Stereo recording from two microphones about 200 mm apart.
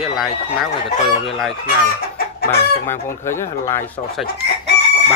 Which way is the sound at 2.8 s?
10° left (ahead or behind).